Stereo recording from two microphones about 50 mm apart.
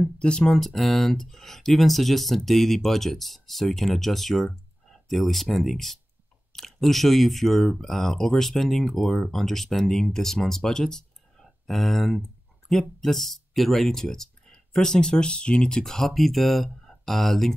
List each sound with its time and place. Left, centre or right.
0.0 s speech: centre
0.5 s speech: centre